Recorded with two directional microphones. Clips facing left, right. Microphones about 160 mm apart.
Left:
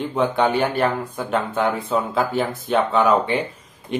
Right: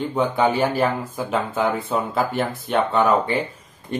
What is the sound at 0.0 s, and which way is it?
Speech, centre (ahead or behind).